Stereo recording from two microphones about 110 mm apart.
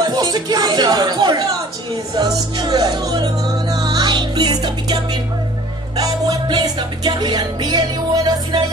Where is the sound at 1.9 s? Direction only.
35° right (ahead or behind).